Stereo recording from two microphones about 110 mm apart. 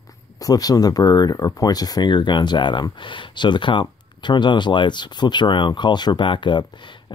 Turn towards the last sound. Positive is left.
turn(degrees=45)  # may be behind; listen again after turning